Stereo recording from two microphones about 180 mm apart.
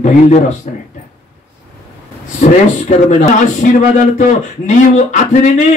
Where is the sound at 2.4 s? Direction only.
40° left (ahead or behind).